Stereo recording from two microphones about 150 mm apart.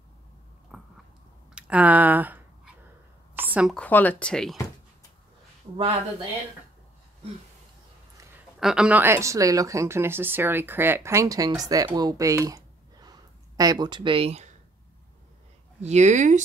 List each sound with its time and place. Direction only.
0.7 s biting: 5° right (ahead or behind)
1.5 s a sound: 10° right (ahead or behind)
3.6 s speech: 5° left (ahead or behind)
5.7 s speech: 30° right (ahead or behind)
8.5 s speech: 5° right (ahead or behind); by 14.5 s 45° right (ahead or behind)
15.8 s speech: 50° right (ahead or behind)